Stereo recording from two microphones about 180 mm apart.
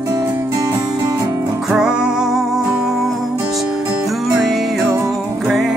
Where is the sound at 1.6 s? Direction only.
5° right (ahead or behind).